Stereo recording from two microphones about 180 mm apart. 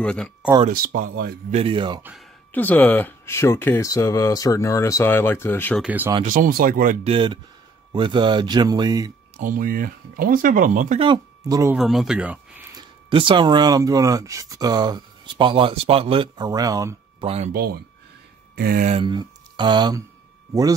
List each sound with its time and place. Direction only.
0.0 s speech: 5° left (ahead or behind)
0.7 s speech: 50° right (ahead or behind)
1.5 s speech: 30° right (ahead or behind)
2.5 s speech: 10° left (ahead or behind)
5.8 s speech: 10° right (ahead or behind)
6.2 s speech: 50° right (ahead or behind)
7.1 s speech: 30° right (ahead or behind)
9.4 s speech: 50° right (ahead or behind)
11.0 s speech: 25° right (ahead or behind)
11.7 s speech: centre (ahead or behind)
12.7 s speech: 30° right (ahead or behind)
17.5 s speech: 60° right (ahead or behind)
18.9 s speech: 30° right (ahead or behind)